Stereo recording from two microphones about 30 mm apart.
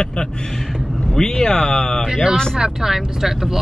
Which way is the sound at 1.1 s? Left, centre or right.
Centre.